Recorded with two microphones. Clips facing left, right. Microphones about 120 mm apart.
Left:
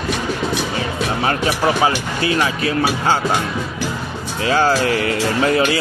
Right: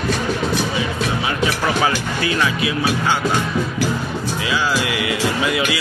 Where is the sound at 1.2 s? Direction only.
45° left (ahead or behind).